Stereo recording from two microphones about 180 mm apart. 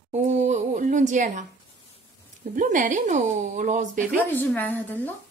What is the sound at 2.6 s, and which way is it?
A woman's voice, 45° right (ahead or behind).